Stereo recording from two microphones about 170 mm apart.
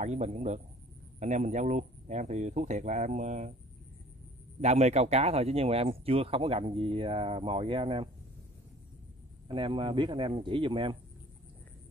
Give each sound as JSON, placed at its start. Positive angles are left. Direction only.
{"t": 0.0, "sound": "speech", "side_deg": -40}
{"t": 4.6, "sound": "speech", "side_deg": -40}
{"t": 9.5, "sound": "a man's voice", "side_deg": -30}